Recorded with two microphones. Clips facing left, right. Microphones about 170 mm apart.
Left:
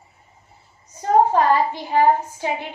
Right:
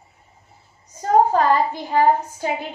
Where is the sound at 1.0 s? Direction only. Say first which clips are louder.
Even; 40° right (ahead or behind).